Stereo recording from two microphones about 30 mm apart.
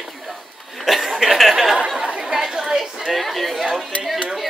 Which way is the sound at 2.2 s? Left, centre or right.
Centre.